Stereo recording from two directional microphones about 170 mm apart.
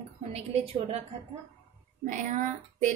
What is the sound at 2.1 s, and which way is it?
Speech, 50° right (ahead or behind).